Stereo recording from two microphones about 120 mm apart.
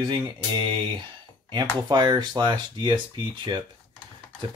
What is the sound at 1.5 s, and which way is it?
Speech, 35° right (ahead or behind).